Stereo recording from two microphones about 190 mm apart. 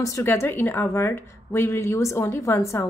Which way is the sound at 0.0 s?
15° left (ahead or behind).